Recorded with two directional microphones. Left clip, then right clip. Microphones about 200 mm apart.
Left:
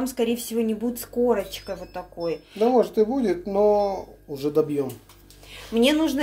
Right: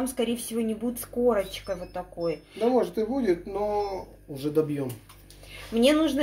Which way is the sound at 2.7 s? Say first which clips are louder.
Left 6 dB; 55° left (ahead or behind).